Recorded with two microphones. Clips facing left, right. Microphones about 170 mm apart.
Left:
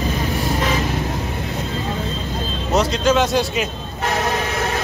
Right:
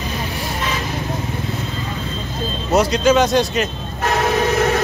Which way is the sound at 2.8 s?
Centre (ahead or behind).